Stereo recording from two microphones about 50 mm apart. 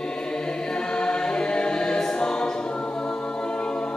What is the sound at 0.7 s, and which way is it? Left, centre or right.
Choir, centre.